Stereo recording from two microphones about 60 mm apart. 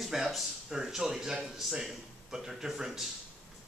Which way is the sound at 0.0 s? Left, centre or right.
Centre.